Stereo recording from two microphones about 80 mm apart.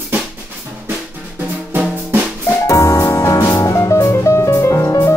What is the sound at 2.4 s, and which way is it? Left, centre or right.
Music, left.